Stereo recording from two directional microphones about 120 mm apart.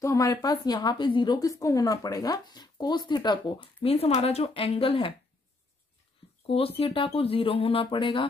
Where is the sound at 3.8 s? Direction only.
60° left (ahead or behind).